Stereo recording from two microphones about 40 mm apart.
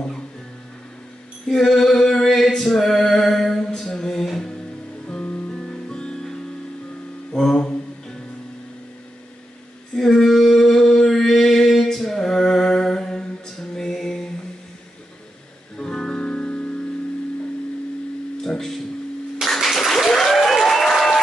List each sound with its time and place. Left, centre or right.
1.5 s male singing: centre
3.9 s music: centre
5.5 s music: centre
7.5 s music: centre
9.9 s a sound: centre
15.8 s music: centre
18.5 s a sound: centre
19.4 s applause: centre